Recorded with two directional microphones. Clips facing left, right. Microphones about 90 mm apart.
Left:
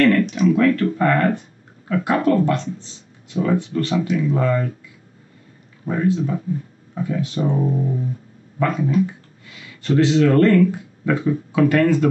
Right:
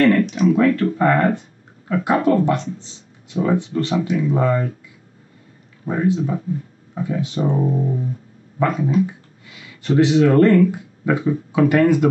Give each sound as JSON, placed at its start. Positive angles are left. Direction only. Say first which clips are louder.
{"t": 0.0, "sound": "speech", "louder": "right 1 dB", "side_deg": -20}
{"t": 5.9, "sound": "speech", "louder": "right 1 dB", "side_deg": -20}